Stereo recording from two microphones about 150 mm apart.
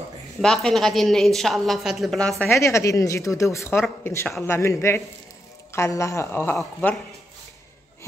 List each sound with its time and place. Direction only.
0.4 s a woman's voice: 5° left (ahead or behind)
2.5 s a woman's voice: 20° left (ahead or behind)